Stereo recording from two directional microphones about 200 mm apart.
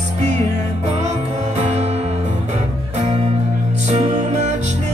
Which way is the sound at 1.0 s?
35° right (ahead or behind).